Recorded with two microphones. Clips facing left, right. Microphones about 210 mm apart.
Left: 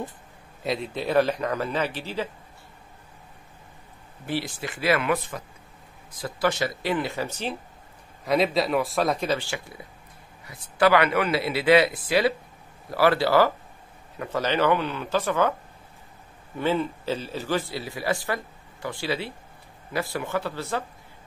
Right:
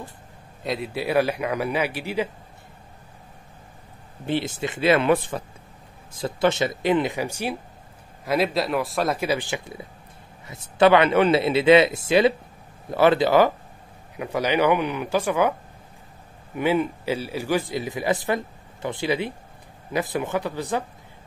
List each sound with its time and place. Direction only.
0.7 s a man's voice: 5° right (ahead or behind)
4.3 s speech: 25° right (ahead or behind)
8.3 s a man's voice: centre (ahead or behind)
16.5 s a man's voice: 15° right (ahead or behind)